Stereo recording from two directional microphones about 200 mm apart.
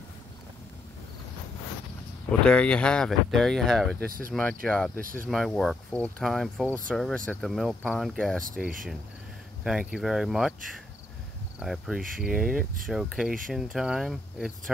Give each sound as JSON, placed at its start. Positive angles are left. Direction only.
{"t": 2.4, "sound": "speech", "side_deg": 5}
{"t": 4.9, "sound": "speech", "side_deg": -45}
{"t": 5.3, "sound": "speech", "side_deg": 0}
{"t": 11.6, "sound": "speech", "side_deg": 0}